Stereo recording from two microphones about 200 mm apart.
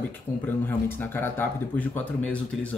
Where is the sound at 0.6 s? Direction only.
10° left (ahead or behind).